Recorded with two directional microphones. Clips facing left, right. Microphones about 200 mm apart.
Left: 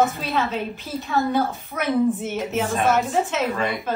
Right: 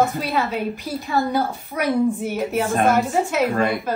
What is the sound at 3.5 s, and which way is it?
Speech, 50° right (ahead or behind).